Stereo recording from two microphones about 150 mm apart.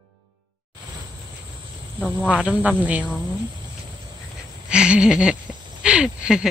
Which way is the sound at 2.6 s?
10° right (ahead or behind).